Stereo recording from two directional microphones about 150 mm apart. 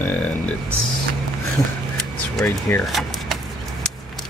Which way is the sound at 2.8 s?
Centre (ahead or behind).